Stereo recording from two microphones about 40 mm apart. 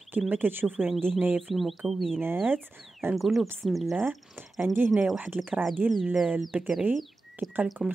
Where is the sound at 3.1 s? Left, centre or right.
Centre.